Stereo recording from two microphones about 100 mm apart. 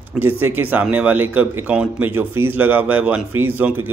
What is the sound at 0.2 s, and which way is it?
Speech, 20° right (ahead or behind).